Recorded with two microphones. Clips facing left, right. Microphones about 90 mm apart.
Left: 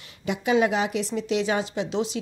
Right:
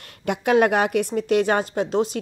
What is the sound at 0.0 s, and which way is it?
A woman's voice, 55° right (ahead or behind).